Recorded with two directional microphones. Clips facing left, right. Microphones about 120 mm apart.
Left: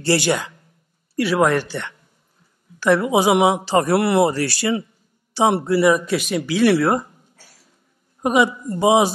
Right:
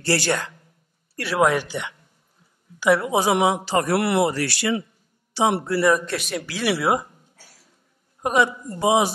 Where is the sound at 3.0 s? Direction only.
10° left (ahead or behind); by 5.6 s 30° left (ahead or behind).